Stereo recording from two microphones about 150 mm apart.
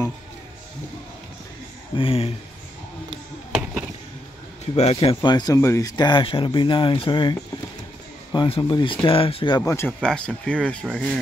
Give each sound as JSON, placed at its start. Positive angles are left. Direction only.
{"t": 2.0, "sound": "speech", "side_deg": 40}
{"t": 3.1, "sound": "a sound", "side_deg": -5}
{"t": 4.7, "sound": "speech", "side_deg": 45}
{"t": 5.2, "sound": "speech", "side_deg": 25}
{"t": 9.6, "sound": "speech", "side_deg": 15}
{"t": 9.9, "sound": "speech", "side_deg": 5}